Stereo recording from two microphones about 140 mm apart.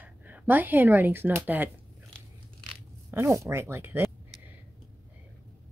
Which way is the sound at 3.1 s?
20° right (ahead or behind).